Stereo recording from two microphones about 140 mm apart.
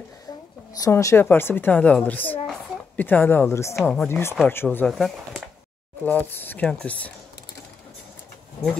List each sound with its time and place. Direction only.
0.7 s a woman's voice: 25° left (ahead or behind)
3.8 s speech: 5° left (ahead or behind)
4.1 s speech: 20° left (ahead or behind)
4.8 s speech: centre (ahead or behind)
6.0 s speech: 15° left (ahead or behind)